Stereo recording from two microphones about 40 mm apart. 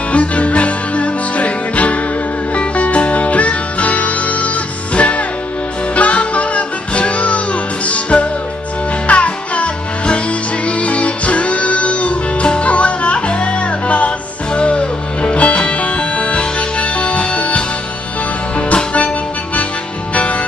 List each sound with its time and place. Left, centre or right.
0.1 s music: left